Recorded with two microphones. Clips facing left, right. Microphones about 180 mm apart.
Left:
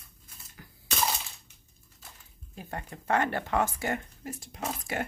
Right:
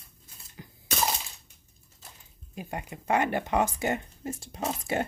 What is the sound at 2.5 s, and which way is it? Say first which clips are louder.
Speech: right 3 dB; 15° right (ahead or behind).